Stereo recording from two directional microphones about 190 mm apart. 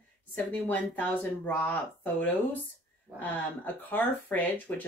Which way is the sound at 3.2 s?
10° left (ahead or behind).